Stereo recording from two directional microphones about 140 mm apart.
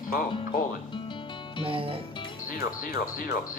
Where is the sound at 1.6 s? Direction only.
40° right (ahead or behind).